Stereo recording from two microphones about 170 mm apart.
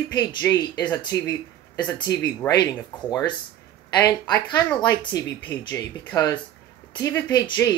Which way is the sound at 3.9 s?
20° left (ahead or behind).